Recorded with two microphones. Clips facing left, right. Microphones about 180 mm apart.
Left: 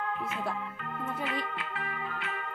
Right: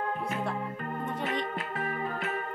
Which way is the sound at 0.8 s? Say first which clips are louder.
Right 1 dB; 45° right (ahead or behind).